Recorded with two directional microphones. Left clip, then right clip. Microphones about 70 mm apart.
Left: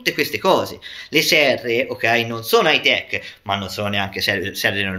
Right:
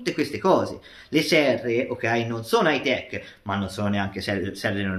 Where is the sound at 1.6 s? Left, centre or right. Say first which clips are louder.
Left 6 dB; right.